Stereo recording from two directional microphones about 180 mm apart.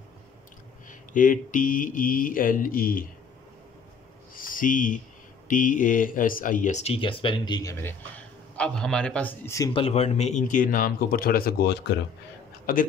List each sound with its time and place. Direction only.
0.8 s speech: 45° left (ahead or behind)
4.4 s speech: 50° left (ahead or behind); by 7.9 s 15° left (ahead or behind)
8.5 s a man's voice: 5° left (ahead or behind)
9.7 s speech: 30° left (ahead or behind); by 12.0 s 65° left (ahead or behind)
12.7 s speech: 50° left (ahead or behind)